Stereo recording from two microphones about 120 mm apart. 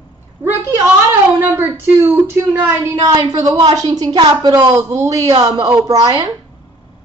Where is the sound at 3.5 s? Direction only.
35° right (ahead or behind).